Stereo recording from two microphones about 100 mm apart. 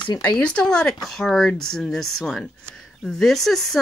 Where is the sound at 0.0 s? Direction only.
45° left (ahead or behind).